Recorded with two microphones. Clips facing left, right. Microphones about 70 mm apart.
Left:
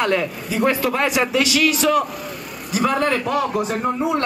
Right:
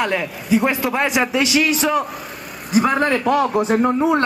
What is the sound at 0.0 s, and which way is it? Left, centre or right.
A man's voice, centre.